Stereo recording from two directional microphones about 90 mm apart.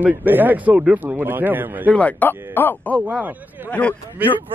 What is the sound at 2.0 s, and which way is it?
Speech, 20° left (ahead or behind).